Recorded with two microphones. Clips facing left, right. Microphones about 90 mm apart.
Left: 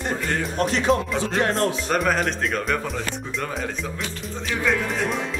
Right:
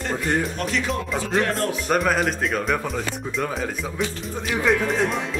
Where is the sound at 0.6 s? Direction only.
35° left (ahead or behind).